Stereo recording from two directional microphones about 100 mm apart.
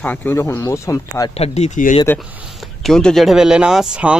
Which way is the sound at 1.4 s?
90° left.